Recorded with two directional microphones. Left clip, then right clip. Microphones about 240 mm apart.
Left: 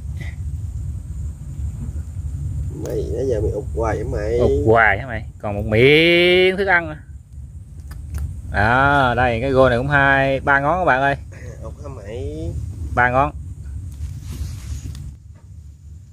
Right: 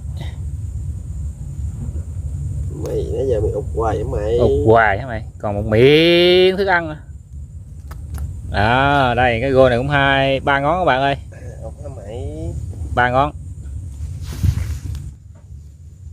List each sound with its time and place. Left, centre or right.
2.8 s speech: centre
4.6 s speech: centre
11.3 s a sound: left
12.9 s speech: centre